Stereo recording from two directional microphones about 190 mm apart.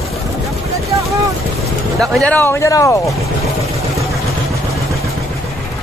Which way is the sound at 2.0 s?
5° left (ahead or behind).